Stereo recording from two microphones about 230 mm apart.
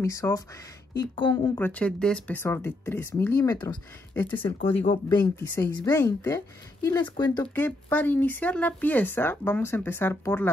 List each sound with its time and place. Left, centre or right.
0.0 s speech: centre
4.6 s speech: left
5.5 s speech: centre
7.4 s speech: centre